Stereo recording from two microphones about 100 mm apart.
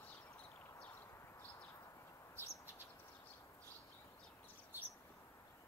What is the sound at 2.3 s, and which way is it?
Bird, 30° left (ahead or behind).